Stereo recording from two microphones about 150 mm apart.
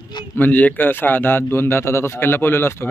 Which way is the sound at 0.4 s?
10° left (ahead or behind).